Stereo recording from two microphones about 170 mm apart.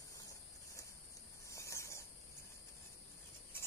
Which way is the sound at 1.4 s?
15° left (ahead or behind).